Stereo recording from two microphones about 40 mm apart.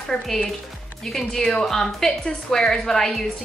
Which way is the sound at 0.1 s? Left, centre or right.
Centre.